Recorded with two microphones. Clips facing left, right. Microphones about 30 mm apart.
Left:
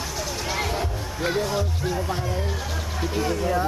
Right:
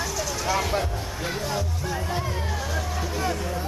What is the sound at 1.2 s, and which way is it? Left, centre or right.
Speech, centre.